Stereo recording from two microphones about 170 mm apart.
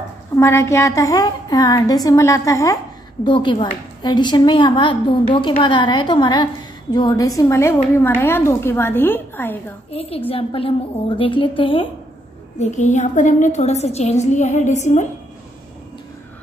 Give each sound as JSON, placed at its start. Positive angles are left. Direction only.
{"t": 0.4, "sound": "a woman's voice", "side_deg": 15}
{"t": 9.8, "sound": "a woman's voice", "side_deg": 35}
{"t": 12.5, "sound": "a woman's voice", "side_deg": 45}